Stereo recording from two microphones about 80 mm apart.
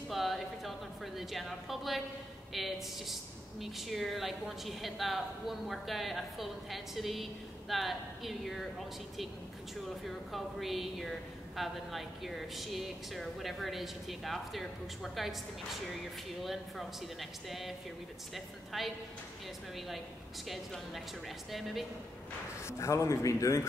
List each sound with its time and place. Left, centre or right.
0.1 s a sound: centre
2.5 s a woman's voice: centre
20.4 s a woman's voice: centre
22.6 s a man's voice: left